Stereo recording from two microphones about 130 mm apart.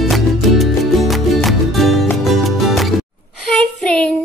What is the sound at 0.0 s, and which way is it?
Music, centre (ahead or behind).